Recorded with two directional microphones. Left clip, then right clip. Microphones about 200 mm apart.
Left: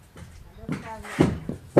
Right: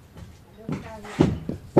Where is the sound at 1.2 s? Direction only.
45° left (ahead or behind).